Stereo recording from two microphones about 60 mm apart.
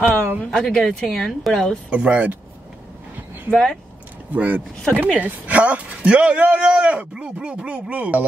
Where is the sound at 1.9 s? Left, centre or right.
Right.